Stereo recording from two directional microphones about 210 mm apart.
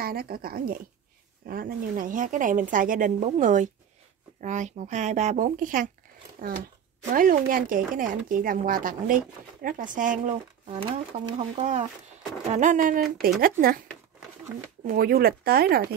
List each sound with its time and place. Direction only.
0.0 s speech: 45° right (ahead or behind)
7.1 s speech: 40° right (ahead or behind)
11.3 s speech: 35° right (ahead or behind)
14.9 s speech: 45° right (ahead or behind)